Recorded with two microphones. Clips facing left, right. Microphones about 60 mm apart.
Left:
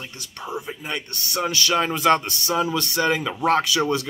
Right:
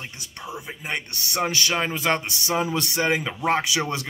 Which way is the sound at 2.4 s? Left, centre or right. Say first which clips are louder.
Even; right.